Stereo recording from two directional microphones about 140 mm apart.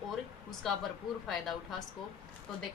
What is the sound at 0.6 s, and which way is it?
Speech, centre (ahead or behind).